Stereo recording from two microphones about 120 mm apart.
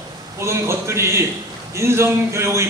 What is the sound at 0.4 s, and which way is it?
A man's voice, 20° right (ahead or behind).